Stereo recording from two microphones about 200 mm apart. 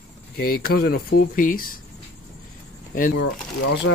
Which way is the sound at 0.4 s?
50° left (ahead or behind).